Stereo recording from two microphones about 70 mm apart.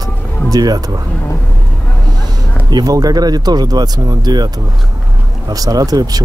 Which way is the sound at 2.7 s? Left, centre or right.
Right.